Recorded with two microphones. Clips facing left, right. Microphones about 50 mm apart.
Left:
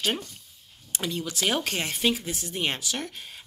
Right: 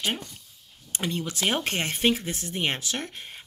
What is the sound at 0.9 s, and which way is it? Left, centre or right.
Speech, right.